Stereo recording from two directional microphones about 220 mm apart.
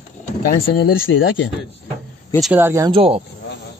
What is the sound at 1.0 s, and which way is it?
Speech, 60° left (ahead or behind).